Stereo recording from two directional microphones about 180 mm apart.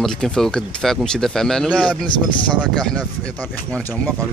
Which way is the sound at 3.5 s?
5° left (ahead or behind).